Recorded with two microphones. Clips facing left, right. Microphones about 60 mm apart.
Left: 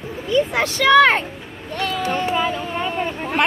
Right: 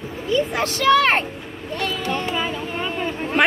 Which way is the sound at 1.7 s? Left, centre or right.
Left.